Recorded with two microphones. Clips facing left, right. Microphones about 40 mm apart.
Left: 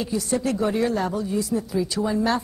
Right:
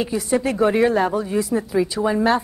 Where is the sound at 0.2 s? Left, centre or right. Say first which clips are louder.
Right 6 dB; right.